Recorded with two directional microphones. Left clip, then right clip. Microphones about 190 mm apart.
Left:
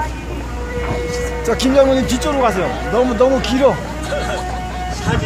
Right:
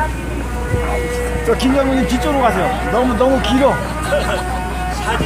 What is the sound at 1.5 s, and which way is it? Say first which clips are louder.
Speech: left 3 dB; 60° left (ahead or behind).